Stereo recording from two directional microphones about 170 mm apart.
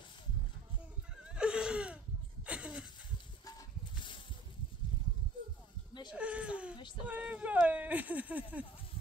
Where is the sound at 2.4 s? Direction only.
5° right (ahead or behind).